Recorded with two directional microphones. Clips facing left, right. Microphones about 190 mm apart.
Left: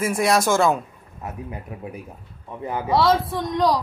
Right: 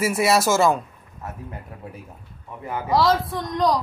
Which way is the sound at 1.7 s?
20° left (ahead or behind).